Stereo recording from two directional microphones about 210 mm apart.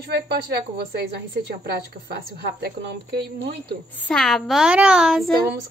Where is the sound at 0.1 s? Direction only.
50° right (ahead or behind).